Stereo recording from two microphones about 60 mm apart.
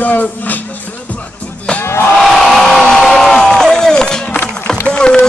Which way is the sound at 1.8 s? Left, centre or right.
Left.